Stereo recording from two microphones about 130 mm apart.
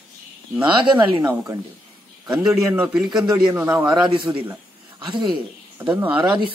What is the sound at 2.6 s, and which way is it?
Speech, 25° right (ahead or behind).